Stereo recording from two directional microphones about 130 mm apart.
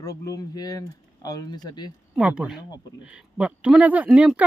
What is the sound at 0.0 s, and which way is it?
Speech, 25° left (ahead or behind).